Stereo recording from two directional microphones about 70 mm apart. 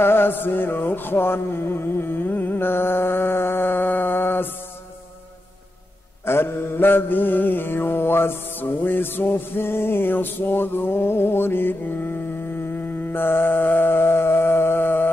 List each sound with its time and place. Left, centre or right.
0.0 s mantra: left
6.2 s mantra: left